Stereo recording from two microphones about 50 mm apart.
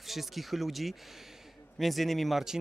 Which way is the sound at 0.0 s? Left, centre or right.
Centre.